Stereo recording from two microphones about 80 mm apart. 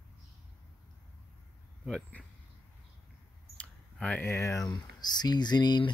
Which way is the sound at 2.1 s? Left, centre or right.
Centre.